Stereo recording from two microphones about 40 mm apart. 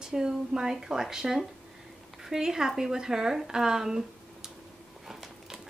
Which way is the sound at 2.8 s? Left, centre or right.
Centre.